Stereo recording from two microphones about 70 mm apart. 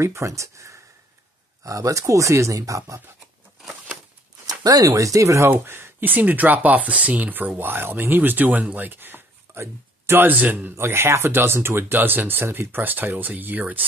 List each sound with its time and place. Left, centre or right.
0.0 s speech: right
4.5 s speech: right
5.5 s speech: right